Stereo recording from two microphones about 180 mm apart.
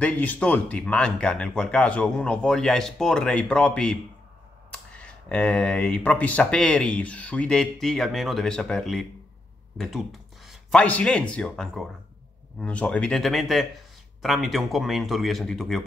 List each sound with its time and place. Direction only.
0.0 s speech: 10° left (ahead or behind)